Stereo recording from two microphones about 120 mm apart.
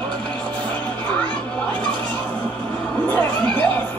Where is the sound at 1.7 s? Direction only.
40° right (ahead or behind).